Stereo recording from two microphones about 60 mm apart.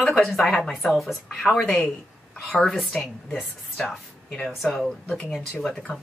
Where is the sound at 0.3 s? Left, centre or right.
Centre.